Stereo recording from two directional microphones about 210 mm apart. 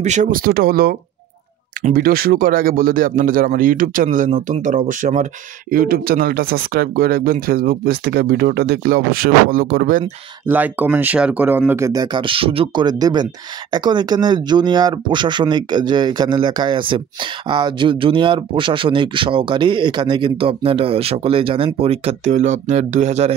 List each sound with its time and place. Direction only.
0.0 s a man's voice: 35° right (ahead or behind)
10.4 s speech: 10° right (ahead or behind); by 23.3 s 30° right (ahead or behind)